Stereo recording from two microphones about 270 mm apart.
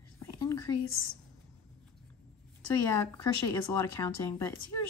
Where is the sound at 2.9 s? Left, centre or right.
Centre.